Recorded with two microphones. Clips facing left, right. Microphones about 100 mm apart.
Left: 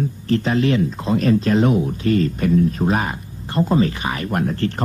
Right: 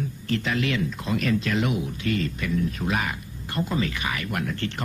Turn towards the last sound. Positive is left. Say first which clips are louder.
# left 8 dB
turn(degrees=35)  # may be behind; listen again after turning